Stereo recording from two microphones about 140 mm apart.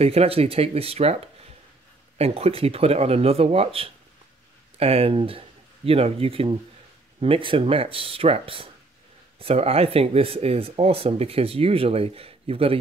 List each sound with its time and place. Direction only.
0.0 s speech: 45° right (ahead or behind)